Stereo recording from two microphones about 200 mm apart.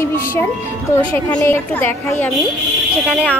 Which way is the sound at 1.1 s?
10° left (ahead or behind).